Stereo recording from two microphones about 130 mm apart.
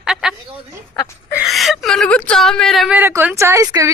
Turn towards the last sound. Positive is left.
turn(degrees=-25)  # may be behind; listen again after turning